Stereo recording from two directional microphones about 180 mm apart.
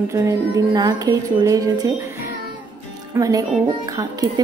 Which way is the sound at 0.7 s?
20° right (ahead or behind).